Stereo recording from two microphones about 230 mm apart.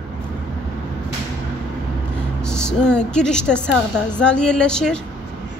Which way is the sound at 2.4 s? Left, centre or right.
Centre.